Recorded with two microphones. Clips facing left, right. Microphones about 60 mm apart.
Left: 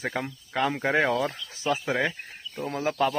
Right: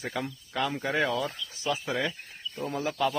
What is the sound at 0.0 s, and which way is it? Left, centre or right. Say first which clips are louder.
Speech: left 3 dB; left.